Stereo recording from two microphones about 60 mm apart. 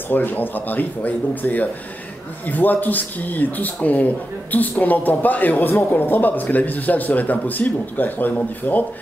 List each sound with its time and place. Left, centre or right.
0.1 s speech: left